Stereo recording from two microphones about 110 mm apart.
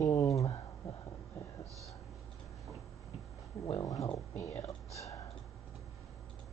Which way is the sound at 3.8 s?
35° left (ahead or behind).